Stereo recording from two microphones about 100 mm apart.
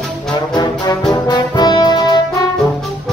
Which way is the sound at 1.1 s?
45° left (ahead or behind).